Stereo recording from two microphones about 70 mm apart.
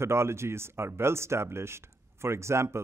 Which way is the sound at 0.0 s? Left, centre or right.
Right.